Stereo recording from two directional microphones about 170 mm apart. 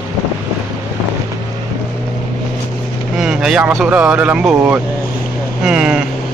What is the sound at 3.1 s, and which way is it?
Vehicle, 5° right (ahead or behind).